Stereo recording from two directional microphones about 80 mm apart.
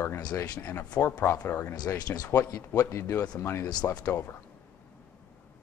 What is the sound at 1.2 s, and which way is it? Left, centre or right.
Speech, left.